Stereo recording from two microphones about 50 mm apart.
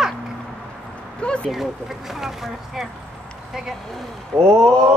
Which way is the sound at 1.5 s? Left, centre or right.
Centre.